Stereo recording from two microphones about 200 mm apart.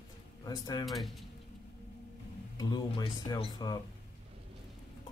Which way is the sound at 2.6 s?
20° left (ahead or behind).